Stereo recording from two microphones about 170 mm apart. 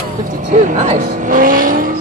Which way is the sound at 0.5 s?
45° right (ahead or behind).